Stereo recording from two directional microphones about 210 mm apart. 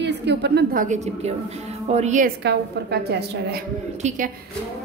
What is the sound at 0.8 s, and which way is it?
A woman's voice, 35° right (ahead or behind).